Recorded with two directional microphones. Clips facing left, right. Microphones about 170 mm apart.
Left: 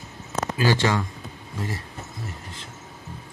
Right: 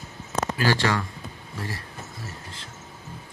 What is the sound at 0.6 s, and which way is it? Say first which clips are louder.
Speech: left 2 dB; 20° left (ahead or behind).